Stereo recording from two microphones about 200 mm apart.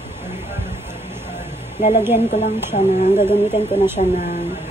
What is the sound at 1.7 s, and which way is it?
A woman's voice, 35° left (ahead or behind).